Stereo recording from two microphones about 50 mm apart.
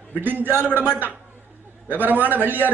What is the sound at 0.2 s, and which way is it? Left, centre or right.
Speech, right.